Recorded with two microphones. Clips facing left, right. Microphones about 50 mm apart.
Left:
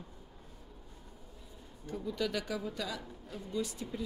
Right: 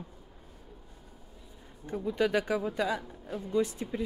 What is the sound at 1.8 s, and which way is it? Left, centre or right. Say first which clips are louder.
Speech: right 6 dB; right.